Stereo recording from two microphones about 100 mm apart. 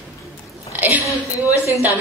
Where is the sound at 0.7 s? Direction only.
15° right (ahead or behind).